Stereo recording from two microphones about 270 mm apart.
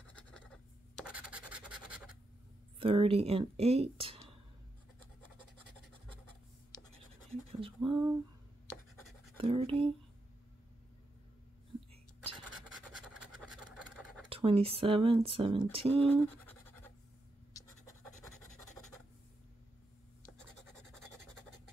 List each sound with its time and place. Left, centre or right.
0.9 s scratch: centre
2.8 s speech: centre
6.7 s scratch: centre
7.6 s a sound: centre
9.4 s speech: right
12.9 s scratch: centre
14.3 s speech: right
16.1 s scratch: centre
18.6 s writing: centre